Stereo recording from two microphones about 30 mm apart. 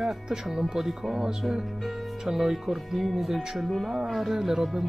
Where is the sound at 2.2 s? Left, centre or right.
Centre.